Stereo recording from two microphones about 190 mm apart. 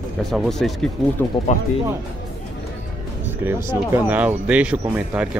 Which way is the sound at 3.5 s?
15° right (ahead or behind).